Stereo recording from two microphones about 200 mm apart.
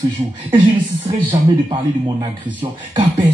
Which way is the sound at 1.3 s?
20° right (ahead or behind).